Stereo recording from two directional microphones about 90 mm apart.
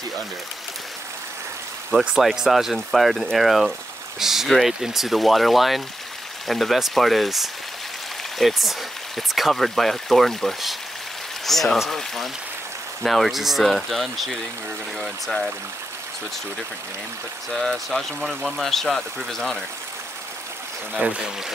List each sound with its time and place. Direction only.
1.9 s speech: centre (ahead or behind)
17.5 s speech: 5° left (ahead or behind)
21.0 s speech: 15° right (ahead or behind)